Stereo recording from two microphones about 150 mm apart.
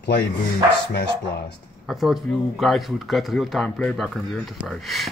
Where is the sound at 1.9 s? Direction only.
Centre (ahead or behind).